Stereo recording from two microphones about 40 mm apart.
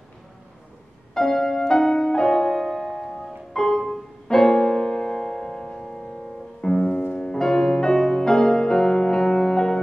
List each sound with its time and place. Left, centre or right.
1.1 s music: centre